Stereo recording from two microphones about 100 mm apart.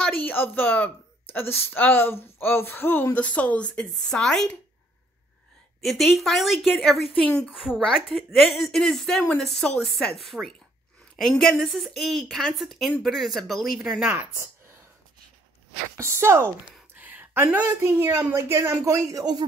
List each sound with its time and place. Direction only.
0.2 s a woman's voice: 20° left (ahead or behind)
5.8 s a woman's voice: centre (ahead or behind)
16.0 s a woman's voice: 25° right (ahead or behind)
16.9 s a sound: 15° right (ahead or behind)
17.5 s a woman's voice: 20° right (ahead or behind); by 19.4 s 40° right (ahead or behind)